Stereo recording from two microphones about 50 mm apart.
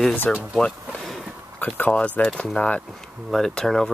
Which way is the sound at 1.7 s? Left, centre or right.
Left.